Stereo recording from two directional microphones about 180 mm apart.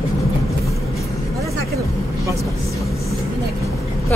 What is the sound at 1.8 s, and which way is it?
Vehicle, 15° right (ahead or behind).